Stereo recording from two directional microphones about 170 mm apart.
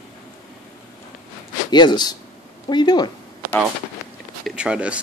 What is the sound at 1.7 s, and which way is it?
Speech, 25° left (ahead or behind).